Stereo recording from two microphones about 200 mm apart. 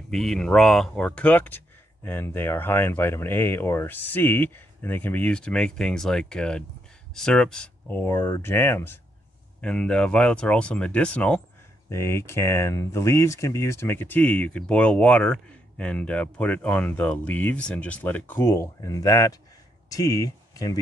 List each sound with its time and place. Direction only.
0.1 s speech: centre (ahead or behind)